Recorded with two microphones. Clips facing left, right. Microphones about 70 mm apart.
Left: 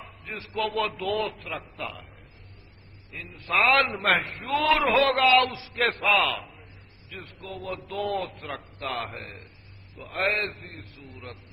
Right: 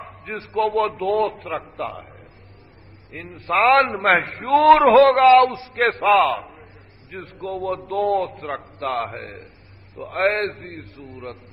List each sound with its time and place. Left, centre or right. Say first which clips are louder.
0.0 s a sound: right 7 dB; right
0.8 s a man's voice: right 8 dB; right
1.6 s a man's voice: right 7 dB; right
3.3 s a man's voice: right 6 dB; right
5.1 s a man's voice: right 8 dB; right
7.2 s a man's voice: right 10 dB; right